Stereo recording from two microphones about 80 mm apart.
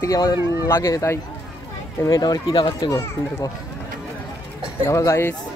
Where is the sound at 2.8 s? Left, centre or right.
Left.